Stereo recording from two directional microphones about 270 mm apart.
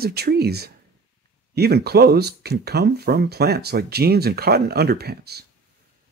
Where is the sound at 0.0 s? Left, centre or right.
Right.